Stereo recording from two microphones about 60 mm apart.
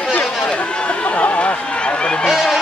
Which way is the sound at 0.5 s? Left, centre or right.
Centre.